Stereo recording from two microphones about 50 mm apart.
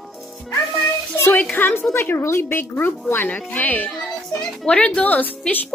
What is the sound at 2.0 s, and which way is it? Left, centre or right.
Speech, left.